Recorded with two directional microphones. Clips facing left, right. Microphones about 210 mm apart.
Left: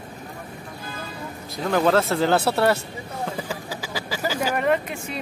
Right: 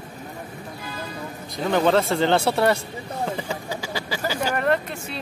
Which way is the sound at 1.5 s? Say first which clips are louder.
Even; centre (ahead or behind).